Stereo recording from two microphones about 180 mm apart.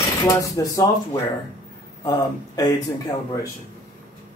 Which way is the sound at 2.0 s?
20° left (ahead or behind).